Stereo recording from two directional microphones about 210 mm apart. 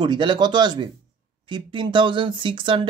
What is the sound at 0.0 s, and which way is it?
Speech, 20° right (ahead or behind).